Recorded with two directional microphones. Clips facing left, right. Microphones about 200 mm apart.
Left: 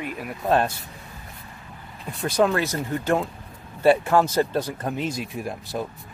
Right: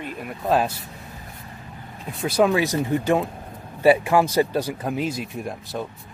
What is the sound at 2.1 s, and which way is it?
Speech, centre (ahead or behind).